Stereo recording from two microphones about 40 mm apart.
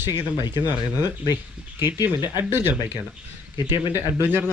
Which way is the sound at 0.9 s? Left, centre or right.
Right.